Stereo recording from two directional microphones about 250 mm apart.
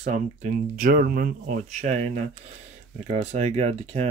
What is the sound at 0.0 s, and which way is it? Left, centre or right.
Speech, right.